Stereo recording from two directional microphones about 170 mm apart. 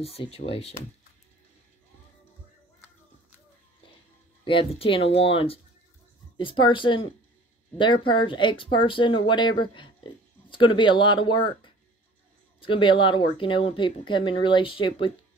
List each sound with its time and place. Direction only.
0.0 s speech: 35° left (ahead or behind)
4.5 s speech: 30° left (ahead or behind)